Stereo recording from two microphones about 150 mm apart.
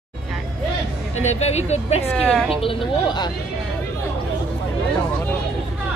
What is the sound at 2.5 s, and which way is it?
Speech, 35° left (ahead or behind).